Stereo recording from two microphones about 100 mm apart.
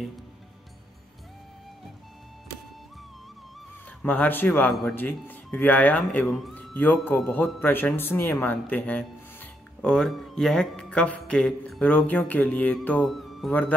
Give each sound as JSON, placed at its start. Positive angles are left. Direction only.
{"t": 4.0, "sound": "speech", "side_deg": 20}
{"t": 12.8, "sound": "music", "side_deg": 5}
{"t": 13.5, "sound": "speech", "side_deg": 15}